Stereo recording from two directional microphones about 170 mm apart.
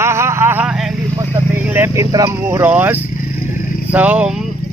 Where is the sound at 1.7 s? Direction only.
15° right (ahead or behind).